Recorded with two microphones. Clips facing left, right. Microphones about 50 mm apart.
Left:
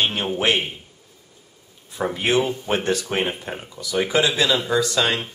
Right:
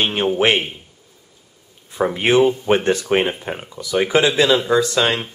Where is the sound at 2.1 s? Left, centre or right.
Right.